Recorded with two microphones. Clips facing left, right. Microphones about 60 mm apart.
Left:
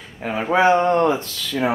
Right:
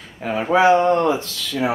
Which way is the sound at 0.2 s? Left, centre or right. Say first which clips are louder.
Right 1 dB; centre.